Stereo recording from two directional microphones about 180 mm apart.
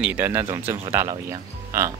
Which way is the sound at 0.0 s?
10° right (ahead or behind).